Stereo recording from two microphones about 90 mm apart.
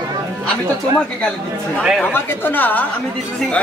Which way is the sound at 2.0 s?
20° left (ahead or behind).